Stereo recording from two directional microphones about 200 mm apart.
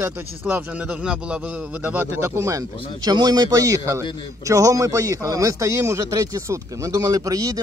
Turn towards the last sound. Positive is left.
turn(degrees=-15)  # may be behind; listen again after turning